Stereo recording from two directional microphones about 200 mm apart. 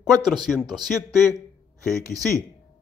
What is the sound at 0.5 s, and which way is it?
Speech, 20° right (ahead or behind).